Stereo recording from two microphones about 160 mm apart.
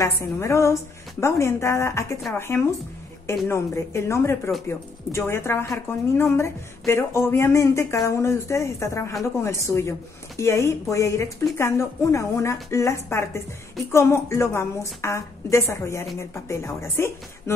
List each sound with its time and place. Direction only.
0.0 s a woman's voice: 20° left (ahead or behind)